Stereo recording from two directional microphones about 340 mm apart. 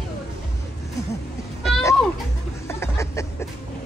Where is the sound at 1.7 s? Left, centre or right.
Centre.